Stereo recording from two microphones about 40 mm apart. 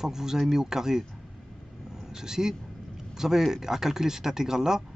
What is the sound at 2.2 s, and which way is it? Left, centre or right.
Speech, centre.